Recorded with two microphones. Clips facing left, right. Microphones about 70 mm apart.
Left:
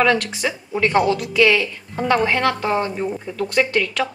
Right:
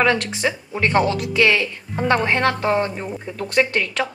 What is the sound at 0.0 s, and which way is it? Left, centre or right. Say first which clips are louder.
A woman's voice: left 1 dB; right.